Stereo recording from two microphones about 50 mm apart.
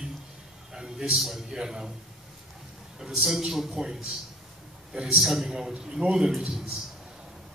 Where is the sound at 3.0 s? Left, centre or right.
Centre.